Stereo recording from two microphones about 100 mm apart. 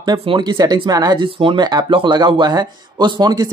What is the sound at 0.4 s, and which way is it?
Speech, 45° right (ahead or behind).